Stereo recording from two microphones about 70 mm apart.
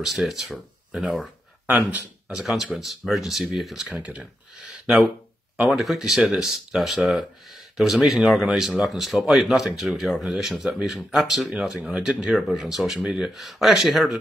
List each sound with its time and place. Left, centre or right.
0.0 s speech: centre
1.7 s speech: right
2.3 s speech: centre
3.8 s speech: centre
4.8 s speech: centre